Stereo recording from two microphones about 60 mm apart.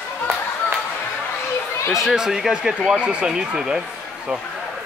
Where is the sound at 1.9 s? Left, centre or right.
Centre.